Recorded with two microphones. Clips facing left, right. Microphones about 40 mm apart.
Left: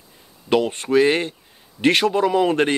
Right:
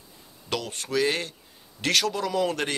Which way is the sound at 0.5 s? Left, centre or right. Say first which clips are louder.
Left 11 dB; left.